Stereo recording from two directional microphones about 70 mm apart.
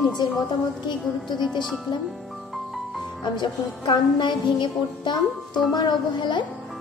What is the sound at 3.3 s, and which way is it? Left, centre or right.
A woman's voice, left.